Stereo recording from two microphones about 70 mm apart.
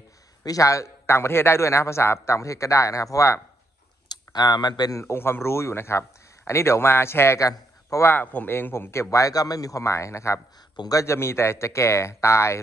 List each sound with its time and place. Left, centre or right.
0.4 s a man's voice: left
4.1 s speech: left
4.9 s a man's voice: left
7.4 s a man's voice: left
8.1 s a man's voice: left
9.1 s a man's voice: left